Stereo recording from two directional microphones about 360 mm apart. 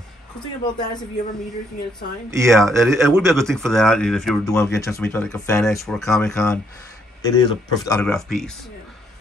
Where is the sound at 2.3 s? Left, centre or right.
Centre.